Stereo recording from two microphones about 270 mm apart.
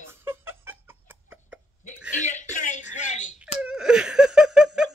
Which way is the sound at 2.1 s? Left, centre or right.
Left.